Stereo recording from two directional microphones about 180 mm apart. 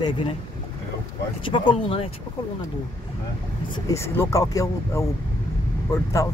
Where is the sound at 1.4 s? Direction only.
30° left (ahead or behind).